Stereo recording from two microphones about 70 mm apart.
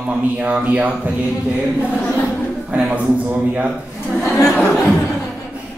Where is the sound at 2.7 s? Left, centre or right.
Centre.